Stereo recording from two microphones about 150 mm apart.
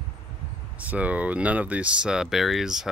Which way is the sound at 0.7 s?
10° right (ahead or behind).